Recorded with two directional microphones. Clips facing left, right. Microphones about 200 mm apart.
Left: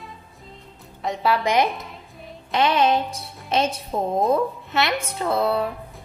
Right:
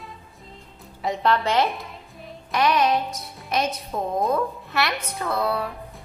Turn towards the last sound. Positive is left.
turn(degrees=25)  # may be behind; listen again after turning